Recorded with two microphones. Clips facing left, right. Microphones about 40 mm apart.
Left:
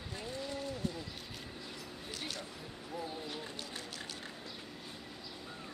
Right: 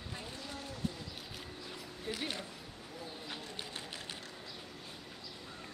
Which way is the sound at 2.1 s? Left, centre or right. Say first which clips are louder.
Right 4 dB; centre.